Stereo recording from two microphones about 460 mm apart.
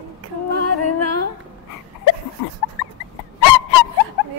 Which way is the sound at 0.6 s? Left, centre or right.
Left.